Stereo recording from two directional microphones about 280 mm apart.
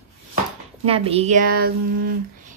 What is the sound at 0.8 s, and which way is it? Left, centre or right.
Speech, right.